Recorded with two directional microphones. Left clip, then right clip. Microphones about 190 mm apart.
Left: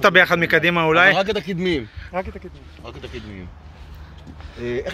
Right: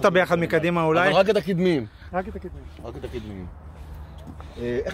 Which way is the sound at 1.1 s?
55° right (ahead or behind).